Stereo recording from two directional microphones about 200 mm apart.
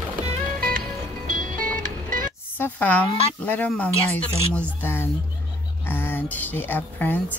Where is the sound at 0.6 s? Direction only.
45° right (ahead or behind).